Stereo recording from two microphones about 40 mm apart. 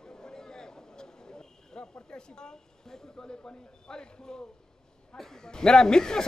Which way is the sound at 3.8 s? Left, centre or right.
Centre.